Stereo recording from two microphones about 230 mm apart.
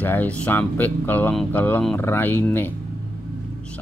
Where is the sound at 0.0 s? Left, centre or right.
Centre.